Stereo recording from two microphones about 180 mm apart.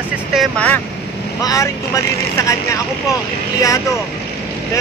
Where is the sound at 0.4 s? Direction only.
5° left (ahead or behind).